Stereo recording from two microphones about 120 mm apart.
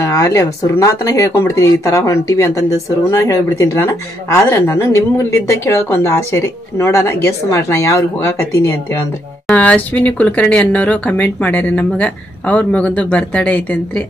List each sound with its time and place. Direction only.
0.0 s a woman's voice: 25° left (ahead or behind)
9.5 s speech: 10° left (ahead or behind)